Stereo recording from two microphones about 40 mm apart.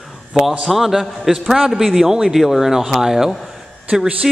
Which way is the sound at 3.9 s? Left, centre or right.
Centre.